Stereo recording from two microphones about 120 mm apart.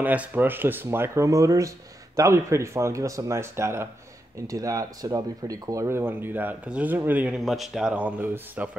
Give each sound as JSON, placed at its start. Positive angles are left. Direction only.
{"t": 0.0, "sound": "speech", "side_deg": -15}